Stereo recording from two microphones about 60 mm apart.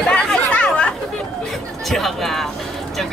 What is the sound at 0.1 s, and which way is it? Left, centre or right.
Chatter, centre.